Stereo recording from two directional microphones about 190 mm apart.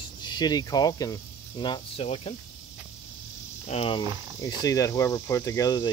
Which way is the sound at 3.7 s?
30° left (ahead or behind).